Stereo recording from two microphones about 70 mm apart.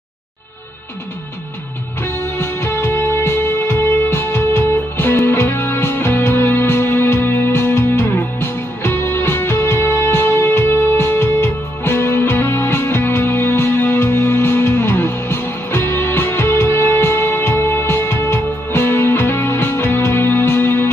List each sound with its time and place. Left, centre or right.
2.3 s music: left
14.6 s music: left